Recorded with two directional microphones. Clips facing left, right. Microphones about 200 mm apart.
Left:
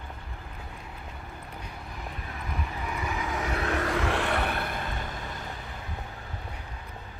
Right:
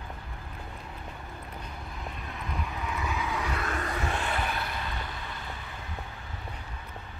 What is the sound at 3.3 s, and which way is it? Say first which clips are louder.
Vehicle: left 2 dB; 45° left (ahead or behind).